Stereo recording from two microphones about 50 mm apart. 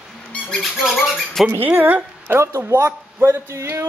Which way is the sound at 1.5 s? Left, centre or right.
Right.